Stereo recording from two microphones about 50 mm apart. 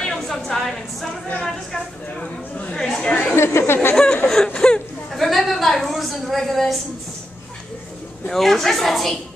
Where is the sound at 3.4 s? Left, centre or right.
Left.